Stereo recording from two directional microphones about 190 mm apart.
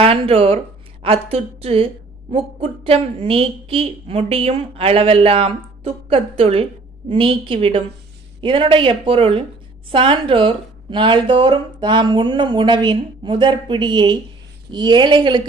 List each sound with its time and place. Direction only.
0.0 s a woman's voice: 30° right (ahead or behind)